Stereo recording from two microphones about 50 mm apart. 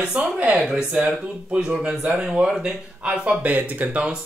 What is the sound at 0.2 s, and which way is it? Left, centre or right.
Speech, right.